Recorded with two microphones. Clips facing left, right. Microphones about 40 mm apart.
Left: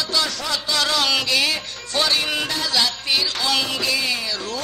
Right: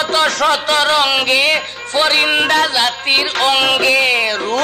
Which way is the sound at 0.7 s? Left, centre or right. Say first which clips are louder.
Right 7 dB; right.